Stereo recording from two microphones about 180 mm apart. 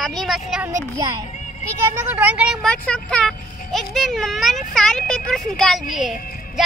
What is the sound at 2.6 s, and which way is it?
A child's voice, 5° left (ahead or behind).